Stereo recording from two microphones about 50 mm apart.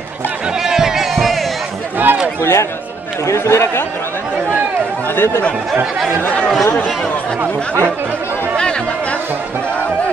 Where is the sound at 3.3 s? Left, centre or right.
Left.